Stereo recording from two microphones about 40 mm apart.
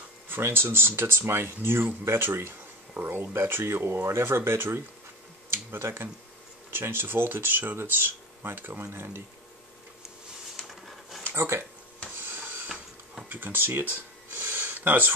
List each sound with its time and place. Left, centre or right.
0.3 s speech: right
2.9 s speech: right
5.7 s speech: right
6.7 s speech: right
10.5 s a sound: centre
11.3 s speech: right
12.2 s printer: right
13.3 s speech: right